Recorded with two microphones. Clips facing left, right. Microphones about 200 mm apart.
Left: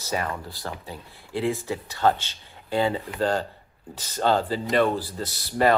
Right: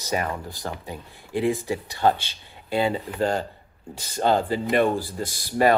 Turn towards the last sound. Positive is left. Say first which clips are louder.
# right 1 dB
turn(degrees=-15)  # may be behind; listen again after turning